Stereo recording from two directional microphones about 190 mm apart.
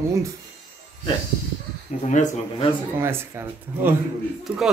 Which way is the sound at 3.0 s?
15° right (ahead or behind).